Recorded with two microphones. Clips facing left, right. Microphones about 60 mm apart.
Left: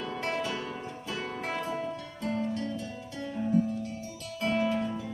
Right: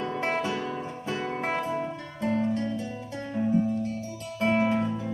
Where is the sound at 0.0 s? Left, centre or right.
Right.